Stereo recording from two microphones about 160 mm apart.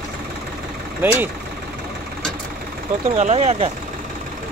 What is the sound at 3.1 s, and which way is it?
Speech, 45° right (ahead or behind).